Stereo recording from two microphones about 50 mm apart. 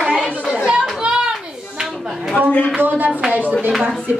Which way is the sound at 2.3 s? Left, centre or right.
Left.